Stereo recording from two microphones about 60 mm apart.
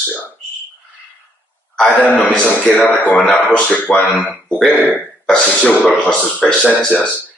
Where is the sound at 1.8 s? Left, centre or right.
Left.